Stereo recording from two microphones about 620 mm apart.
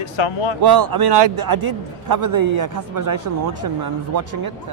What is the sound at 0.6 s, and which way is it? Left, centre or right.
Speech, right.